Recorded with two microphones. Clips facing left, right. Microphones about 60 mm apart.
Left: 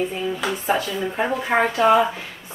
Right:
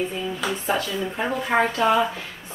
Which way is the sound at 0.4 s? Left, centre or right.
Centre.